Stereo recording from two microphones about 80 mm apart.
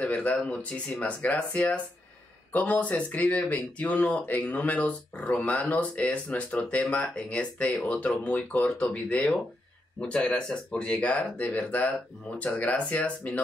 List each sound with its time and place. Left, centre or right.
0.0 s speech: centre